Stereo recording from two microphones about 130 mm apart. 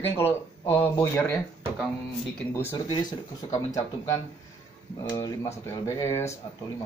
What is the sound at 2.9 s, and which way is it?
Speech, 30° left (ahead or behind).